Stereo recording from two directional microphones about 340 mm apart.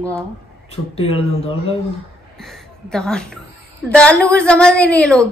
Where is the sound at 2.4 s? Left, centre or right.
Centre.